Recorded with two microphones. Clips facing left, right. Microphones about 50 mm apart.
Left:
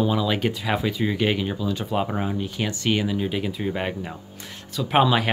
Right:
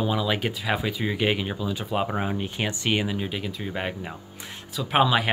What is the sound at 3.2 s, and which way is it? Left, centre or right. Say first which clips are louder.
Speech: left 5 dB; centre.